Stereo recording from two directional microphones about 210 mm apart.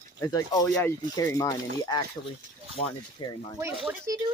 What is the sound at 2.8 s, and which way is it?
Speech, 35° left (ahead or behind).